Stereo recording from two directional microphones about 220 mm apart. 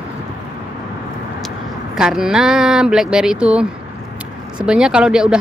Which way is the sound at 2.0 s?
5° right (ahead or behind).